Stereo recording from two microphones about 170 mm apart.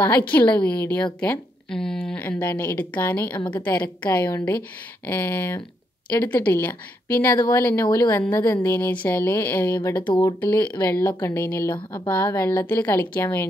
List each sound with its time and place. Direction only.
0.3 s a woman's voice: 10° left (ahead or behind)
8.1 s a woman's voice: 10° left (ahead or behind)
10.0 s speech: 25° left (ahead or behind)
10.4 s a woman's voice: 10° left (ahead or behind)